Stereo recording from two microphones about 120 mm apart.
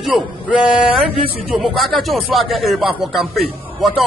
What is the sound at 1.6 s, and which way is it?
A man's voice, centre (ahead or behind).